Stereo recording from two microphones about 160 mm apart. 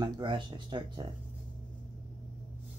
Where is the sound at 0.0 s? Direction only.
30° right (ahead or behind).